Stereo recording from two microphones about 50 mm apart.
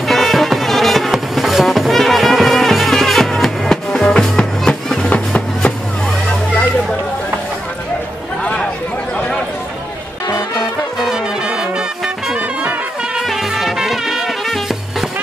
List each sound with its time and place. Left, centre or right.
0.1 s music: centre
11.4 s brass instrument: centre
13.2 s music: centre